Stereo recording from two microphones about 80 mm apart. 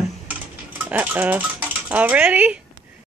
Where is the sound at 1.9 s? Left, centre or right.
Right.